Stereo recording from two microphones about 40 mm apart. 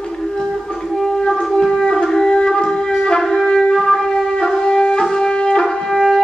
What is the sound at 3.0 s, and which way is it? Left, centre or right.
Wind instrument, centre.